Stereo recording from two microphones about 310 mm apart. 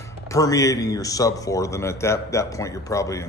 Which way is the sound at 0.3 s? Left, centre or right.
Centre.